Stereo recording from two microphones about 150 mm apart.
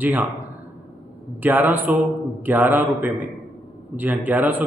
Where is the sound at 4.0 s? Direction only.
10° right (ahead or behind).